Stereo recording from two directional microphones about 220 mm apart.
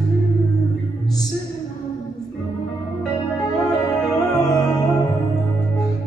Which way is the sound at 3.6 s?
15° left (ahead or behind).